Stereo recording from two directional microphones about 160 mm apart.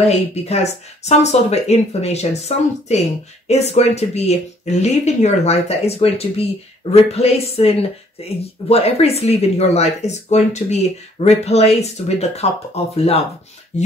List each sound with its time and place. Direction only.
0.0 s speech: 40° left (ahead or behind)
13.7 s filing: 45° left (ahead or behind)